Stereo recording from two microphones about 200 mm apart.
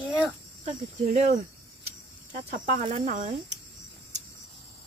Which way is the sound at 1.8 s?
40° right (ahead or behind).